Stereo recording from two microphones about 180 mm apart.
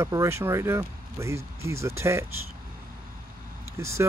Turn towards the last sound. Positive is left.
turn(degrees=-15)  # may be behind; listen again after turning